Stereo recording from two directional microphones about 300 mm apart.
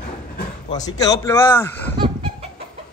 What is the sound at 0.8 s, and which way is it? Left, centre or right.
Speech, centre.